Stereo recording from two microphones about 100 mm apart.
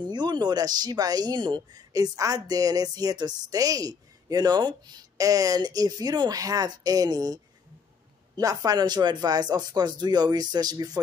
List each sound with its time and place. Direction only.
0.0 s speech: 45° right (ahead or behind)
8.4 s speech: 40° right (ahead or behind)